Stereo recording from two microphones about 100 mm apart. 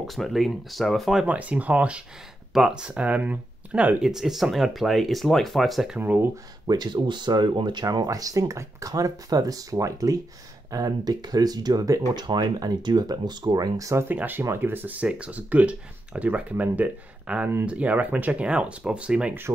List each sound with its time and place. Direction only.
0.0 s speech: centre (ahead or behind)
1.2 s speech: 15° right (ahead or behind)
4.1 s speech: 5° right (ahead or behind)
5.9 s speech: 20° right (ahead or behind)
6.7 s speech: 45° right (ahead or behind)
14.0 s speech: 20° right (ahead or behind)